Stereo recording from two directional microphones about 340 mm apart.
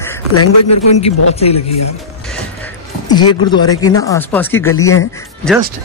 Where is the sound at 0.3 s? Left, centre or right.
Left.